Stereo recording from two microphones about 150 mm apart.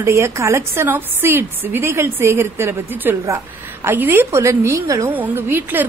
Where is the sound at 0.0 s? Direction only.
20° right (ahead or behind).